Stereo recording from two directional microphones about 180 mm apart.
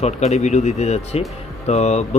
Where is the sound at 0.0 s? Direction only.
35° left (ahead or behind).